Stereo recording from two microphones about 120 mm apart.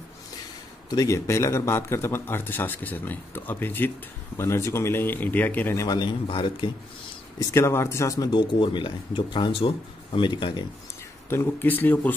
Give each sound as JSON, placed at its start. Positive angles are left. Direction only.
{"t": 0.8, "sound": "a man's voice", "side_deg": 30}
{"t": 5.9, "sound": "a man's voice", "side_deg": 40}
{"t": 7.3, "sound": "a man's voice", "side_deg": 25}
{"t": 8.3, "sound": "speech", "side_deg": 45}
{"t": 11.2, "sound": "speech", "side_deg": 15}